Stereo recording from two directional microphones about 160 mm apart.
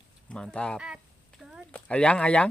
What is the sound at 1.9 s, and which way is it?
Speech, 5° left (ahead or behind).